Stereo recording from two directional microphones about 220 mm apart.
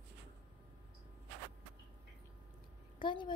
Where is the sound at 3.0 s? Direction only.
20° left (ahead or behind).